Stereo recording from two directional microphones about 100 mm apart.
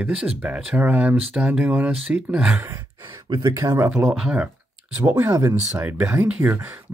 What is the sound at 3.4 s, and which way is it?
Speech, 35° right (ahead or behind).